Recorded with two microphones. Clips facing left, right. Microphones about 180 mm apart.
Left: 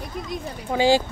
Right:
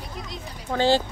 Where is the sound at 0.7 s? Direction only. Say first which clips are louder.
Left 2 dB; 10° left (ahead or behind).